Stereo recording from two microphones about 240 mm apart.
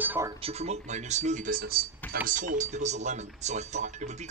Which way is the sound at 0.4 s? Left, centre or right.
Right.